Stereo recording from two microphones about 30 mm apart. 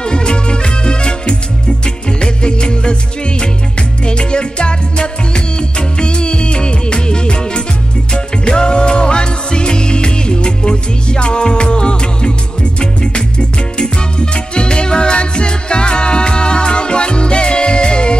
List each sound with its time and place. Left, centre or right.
0.0 s music: left